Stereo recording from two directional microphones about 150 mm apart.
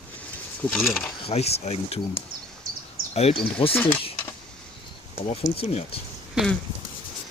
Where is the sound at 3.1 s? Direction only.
45° left (ahead or behind).